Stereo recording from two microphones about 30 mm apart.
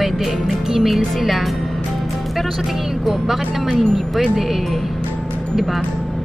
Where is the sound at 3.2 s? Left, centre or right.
Centre.